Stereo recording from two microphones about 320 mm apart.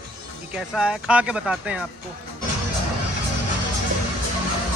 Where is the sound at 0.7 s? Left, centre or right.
Centre.